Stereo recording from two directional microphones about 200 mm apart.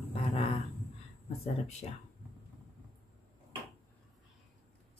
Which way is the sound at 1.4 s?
35° left (ahead or behind).